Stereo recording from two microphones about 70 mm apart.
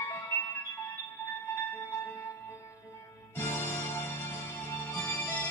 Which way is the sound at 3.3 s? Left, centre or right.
Left.